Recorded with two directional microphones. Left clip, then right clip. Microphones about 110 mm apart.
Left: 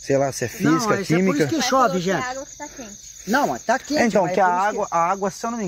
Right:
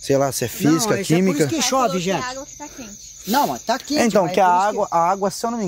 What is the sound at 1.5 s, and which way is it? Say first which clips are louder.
Speech: left 1 dB; 90° left.